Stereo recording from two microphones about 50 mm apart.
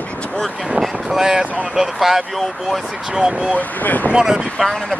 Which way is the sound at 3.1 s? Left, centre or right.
Centre.